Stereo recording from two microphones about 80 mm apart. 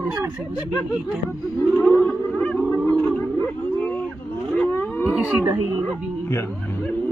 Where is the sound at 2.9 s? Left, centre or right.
Centre.